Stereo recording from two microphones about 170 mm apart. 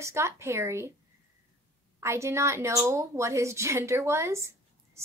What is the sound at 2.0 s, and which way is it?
A woman's voice, 15° right (ahead or behind).